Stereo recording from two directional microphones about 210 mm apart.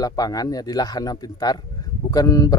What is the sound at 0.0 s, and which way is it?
Speech, 15° left (ahead or behind).